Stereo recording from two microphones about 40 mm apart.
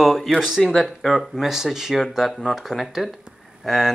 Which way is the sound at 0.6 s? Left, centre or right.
Centre.